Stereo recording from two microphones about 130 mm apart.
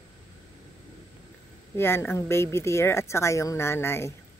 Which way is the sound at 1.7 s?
20° left (ahead or behind).